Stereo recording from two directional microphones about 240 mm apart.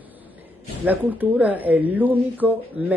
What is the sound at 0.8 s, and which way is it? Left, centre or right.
Speech, centre.